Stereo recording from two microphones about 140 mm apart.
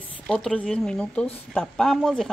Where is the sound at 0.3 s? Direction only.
10° left (ahead or behind).